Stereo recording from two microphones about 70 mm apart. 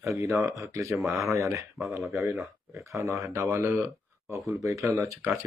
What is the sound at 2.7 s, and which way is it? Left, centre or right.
Speech, right.